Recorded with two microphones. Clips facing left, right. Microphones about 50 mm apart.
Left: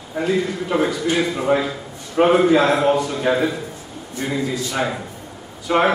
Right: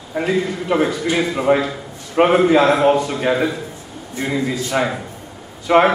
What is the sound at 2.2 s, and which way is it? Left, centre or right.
Speech, right.